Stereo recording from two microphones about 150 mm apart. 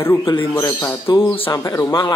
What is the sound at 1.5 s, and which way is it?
Speech, 20° left (ahead or behind).